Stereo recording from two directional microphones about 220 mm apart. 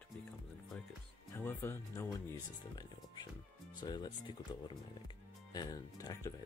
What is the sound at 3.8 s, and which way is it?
Speech, 20° left (ahead or behind).